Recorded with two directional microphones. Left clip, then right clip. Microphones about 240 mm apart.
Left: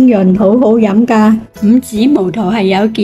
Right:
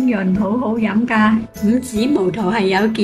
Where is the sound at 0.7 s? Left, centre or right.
Centre.